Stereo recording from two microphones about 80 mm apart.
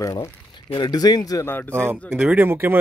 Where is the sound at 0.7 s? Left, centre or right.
Left.